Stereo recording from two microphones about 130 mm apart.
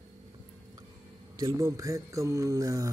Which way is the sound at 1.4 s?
25° right (ahead or behind).